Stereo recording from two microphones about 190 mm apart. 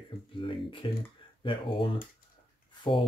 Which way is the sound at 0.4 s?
25° left (ahead or behind).